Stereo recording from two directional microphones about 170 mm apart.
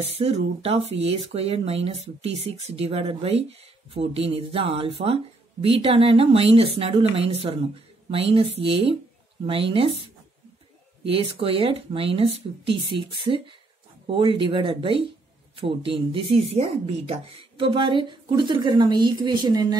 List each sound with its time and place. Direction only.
0.0 s speech: 35° right (ahead or behind)